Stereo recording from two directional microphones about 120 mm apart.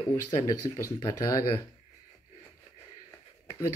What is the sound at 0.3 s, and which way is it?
Speech, 30° left (ahead or behind).